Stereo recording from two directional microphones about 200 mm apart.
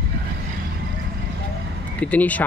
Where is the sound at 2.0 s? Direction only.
5° left (ahead or behind).